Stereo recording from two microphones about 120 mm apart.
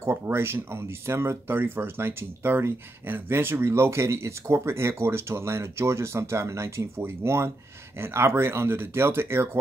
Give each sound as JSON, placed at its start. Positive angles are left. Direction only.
{"t": 0.0, "sound": "speech", "side_deg": -20}